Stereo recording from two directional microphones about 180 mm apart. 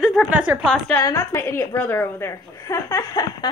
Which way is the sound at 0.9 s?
15° left (ahead or behind).